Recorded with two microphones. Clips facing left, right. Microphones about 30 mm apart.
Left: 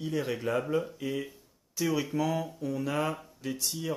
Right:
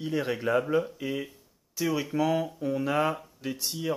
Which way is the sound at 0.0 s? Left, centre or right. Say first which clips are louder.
Right 2 dB; centre.